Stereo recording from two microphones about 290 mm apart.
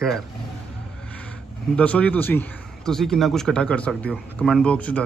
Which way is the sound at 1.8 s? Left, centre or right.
Centre.